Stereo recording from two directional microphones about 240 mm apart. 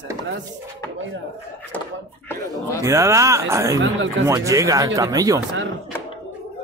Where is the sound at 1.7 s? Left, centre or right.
Centre.